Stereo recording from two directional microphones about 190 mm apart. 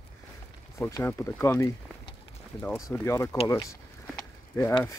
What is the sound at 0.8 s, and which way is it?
Speech, 15° left (ahead or behind).